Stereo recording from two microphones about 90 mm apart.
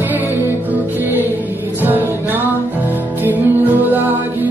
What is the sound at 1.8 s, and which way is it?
Music, 20° right (ahead or behind).